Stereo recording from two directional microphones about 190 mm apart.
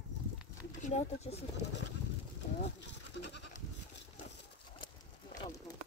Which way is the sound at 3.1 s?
75° left (ahead or behind).